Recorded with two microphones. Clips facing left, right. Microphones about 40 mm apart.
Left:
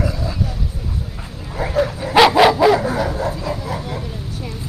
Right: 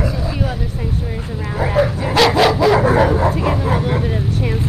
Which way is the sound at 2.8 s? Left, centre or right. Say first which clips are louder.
Right 7 dB; right.